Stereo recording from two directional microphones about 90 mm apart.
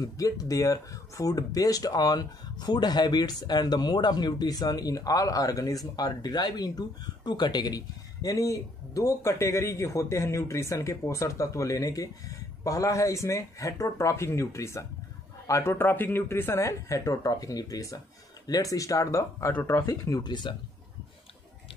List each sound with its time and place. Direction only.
0.0 s speech: 40° left (ahead or behind)
19.9 s speech: 40° left (ahead or behind)
20.5 s speech: 70° left (ahead or behind)